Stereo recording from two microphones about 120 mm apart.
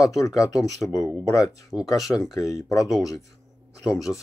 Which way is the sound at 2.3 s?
30° left (ahead or behind).